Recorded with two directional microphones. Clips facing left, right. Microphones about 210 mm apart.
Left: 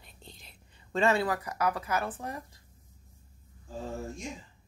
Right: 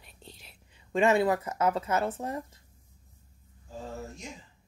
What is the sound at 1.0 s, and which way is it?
Speech, 20° right (ahead or behind).